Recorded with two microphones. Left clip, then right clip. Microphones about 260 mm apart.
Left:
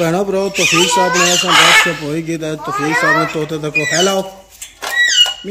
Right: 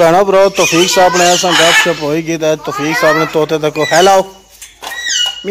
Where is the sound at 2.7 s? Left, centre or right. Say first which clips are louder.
Left 1 dB; centre.